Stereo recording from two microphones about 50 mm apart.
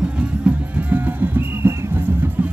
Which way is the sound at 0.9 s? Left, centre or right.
Right.